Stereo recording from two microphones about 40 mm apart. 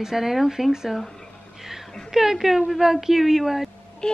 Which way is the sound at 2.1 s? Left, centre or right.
Centre.